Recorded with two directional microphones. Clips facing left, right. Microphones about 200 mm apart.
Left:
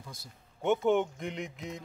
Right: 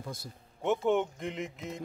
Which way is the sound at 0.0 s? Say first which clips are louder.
Right 7 dB; 55° right (ahead or behind).